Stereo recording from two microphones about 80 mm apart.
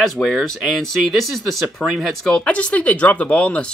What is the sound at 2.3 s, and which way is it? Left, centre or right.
Speech, centre.